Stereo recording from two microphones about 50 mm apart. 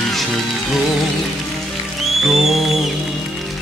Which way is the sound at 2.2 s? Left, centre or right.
Centre.